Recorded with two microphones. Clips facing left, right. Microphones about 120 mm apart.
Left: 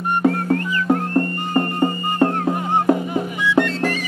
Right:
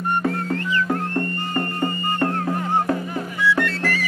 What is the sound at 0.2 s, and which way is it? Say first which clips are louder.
Music: left 5 dB; 25° left (ahead or behind).